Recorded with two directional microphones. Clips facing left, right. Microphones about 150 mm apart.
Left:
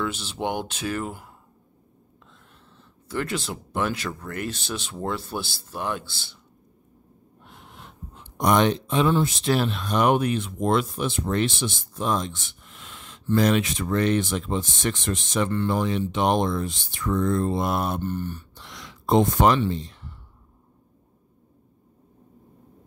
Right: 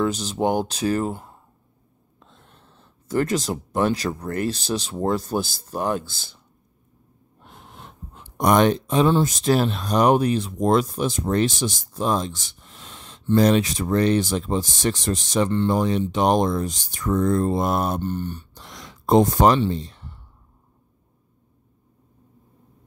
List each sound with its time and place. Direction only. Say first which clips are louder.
0.0 s speech: right 6 dB; 40° right (ahead or behind)
7.4 s wheeze: right 3 dB; 35° right (ahead or behind)
8.4 s speech: right 3 dB; 45° right (ahead or behind)
18.0 s speech: right 2 dB; 30° right (ahead or behind)